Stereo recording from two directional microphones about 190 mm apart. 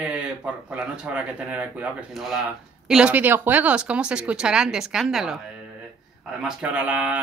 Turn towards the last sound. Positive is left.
turn(degrees=-5)  # may be behind; listen again after turning